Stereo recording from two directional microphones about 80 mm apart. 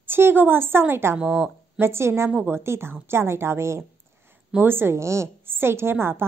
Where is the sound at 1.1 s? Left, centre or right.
Centre.